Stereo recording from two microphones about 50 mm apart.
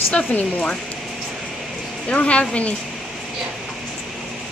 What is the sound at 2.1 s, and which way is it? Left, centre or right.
Speech, left.